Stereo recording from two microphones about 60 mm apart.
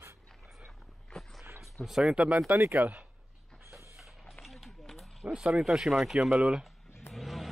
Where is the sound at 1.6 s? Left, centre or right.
Centre.